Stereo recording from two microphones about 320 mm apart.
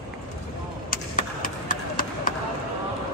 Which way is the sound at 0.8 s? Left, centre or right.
Left.